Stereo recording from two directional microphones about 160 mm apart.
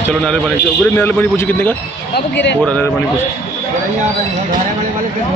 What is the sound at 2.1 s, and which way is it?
Speech, 90° left.